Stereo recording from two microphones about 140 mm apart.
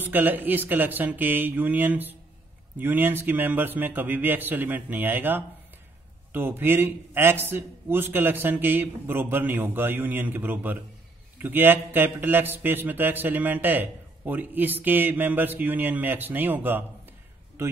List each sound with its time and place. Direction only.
0.0 s speech: 15° right (ahead or behind)